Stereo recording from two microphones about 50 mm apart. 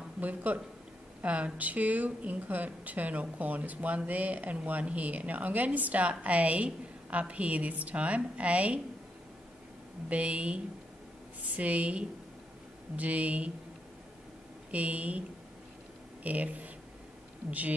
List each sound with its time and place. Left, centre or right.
0.2 s speech: right
10.0 s speech: right
14.7 s speech: right
16.3 s speech: right